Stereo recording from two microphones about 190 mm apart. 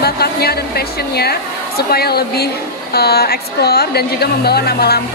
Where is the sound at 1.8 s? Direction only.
55° left (ahead or behind).